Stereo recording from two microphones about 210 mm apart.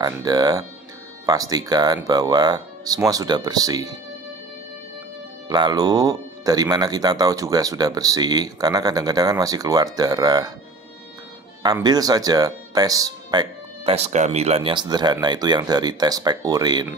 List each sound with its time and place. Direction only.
0.0 s speech: 20° right (ahead or behind)
5.5 s speech: 20° right (ahead or behind)
11.6 s speech: 20° right (ahead or behind)